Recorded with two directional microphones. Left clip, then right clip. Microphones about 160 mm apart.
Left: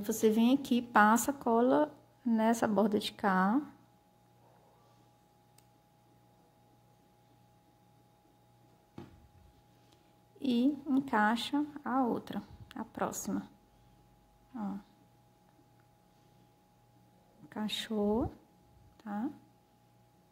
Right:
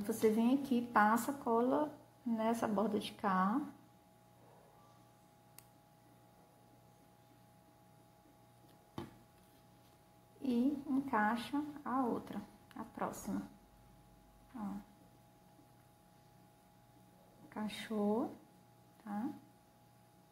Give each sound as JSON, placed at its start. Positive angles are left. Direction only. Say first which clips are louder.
{"t": 0.0, "sound": "speech", "louder": "left 4 dB", "side_deg": 50}
{"t": 10.4, "sound": "speech", "louder": "left 5 dB", "side_deg": 55}
{"t": 17.5, "sound": "speech", "louder": "left 6 dB", "side_deg": 55}